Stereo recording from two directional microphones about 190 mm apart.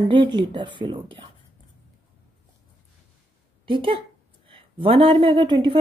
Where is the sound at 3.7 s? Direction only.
25° right (ahead or behind).